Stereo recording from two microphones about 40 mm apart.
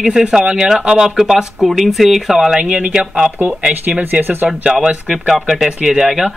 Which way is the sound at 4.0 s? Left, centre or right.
Right.